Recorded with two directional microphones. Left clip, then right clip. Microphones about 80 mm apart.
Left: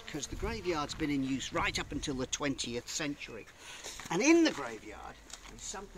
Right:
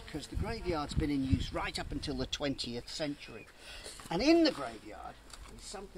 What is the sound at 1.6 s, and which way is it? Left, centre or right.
Speech, right.